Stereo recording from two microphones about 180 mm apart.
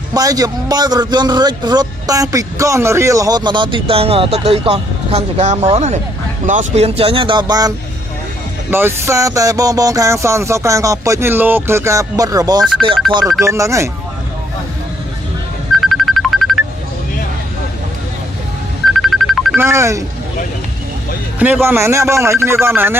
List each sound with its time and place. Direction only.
0.1 s a man's voice: 20° right (ahead or behind)
8.6 s music: 10° right (ahead or behind)
15.8 s music: centre (ahead or behind)
18.9 s music: centre (ahead or behind)
19.5 s music: 15° right (ahead or behind)
21.4 s music: 10° right (ahead or behind)